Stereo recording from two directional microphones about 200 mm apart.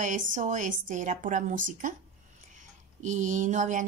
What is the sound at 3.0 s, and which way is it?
Speech, 40° right (ahead or behind).